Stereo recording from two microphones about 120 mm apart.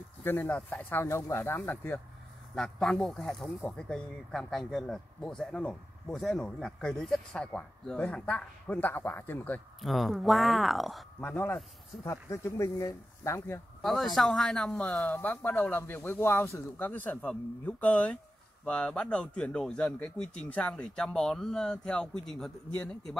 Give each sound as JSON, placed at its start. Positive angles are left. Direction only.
{"t": 0.2, "sound": "a man's voice", "side_deg": 15}
{"t": 2.5, "sound": "a man's voice", "side_deg": 5}
{"t": 9.8, "sound": "speech", "side_deg": 0}
{"t": 11.1, "sound": "speech", "side_deg": 15}
{"t": 13.8, "sound": "a man's voice", "side_deg": 0}